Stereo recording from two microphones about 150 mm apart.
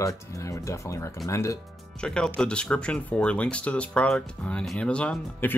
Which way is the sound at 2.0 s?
5° left (ahead or behind).